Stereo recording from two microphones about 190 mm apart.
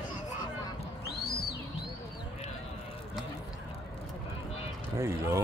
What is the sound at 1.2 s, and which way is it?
Music, 55° left (ahead or behind).